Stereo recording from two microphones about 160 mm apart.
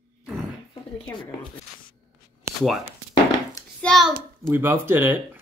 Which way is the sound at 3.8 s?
Centre (ahead or behind).